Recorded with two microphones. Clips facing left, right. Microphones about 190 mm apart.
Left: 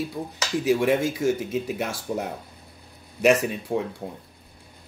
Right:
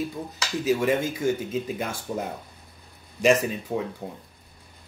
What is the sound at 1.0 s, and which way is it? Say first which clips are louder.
Speech: left 2 dB; 90° left.